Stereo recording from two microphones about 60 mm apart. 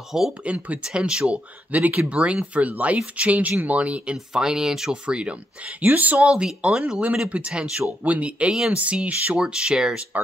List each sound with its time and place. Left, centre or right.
0.4 s speech: right
0.8 s speech: centre
1.3 s speech: right
5.8 s speech: right
9.4 s speech: centre